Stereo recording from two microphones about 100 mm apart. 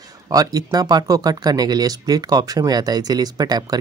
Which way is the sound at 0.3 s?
40° right (ahead or behind).